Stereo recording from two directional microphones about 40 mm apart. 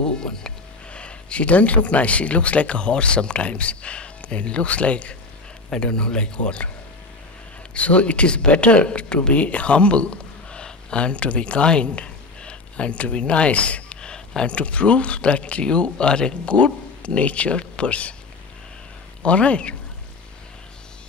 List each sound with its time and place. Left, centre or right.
0.2 s speech: centre
7.7 s speech: left
9.3 s speech: left
14.1 s a sound: centre
14.5 s speech: left
19.2 s speech: left